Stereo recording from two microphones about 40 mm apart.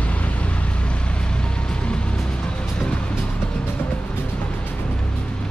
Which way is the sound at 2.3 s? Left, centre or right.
Left.